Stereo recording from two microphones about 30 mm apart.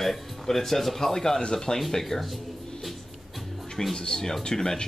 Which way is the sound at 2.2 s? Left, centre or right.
Centre.